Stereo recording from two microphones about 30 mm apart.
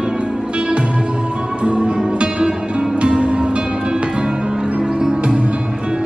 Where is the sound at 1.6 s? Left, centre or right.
Right.